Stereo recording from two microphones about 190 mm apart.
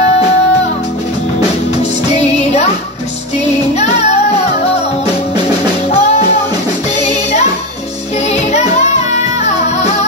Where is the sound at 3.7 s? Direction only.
35° left (ahead or behind).